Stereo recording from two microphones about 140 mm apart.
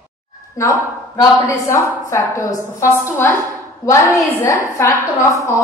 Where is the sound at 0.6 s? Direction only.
25° left (ahead or behind).